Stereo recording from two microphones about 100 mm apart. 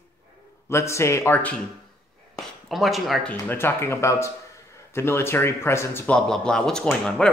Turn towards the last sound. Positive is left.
turn(degrees=5)  # may be behind; listen again after turning